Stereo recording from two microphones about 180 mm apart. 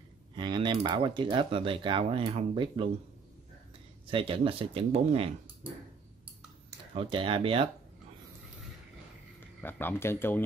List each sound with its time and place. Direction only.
0.4 s speech: 25° right (ahead or behind)
4.1 s speech: 30° right (ahead or behind)
6.9 s speech: 30° right (ahead or behind)
9.4 s speech: 10° left (ahead or behind)